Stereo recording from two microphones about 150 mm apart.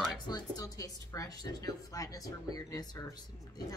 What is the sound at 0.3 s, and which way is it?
Speech, 25° left (ahead or behind).